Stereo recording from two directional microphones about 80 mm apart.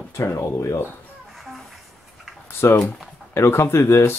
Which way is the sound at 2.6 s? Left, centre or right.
Left.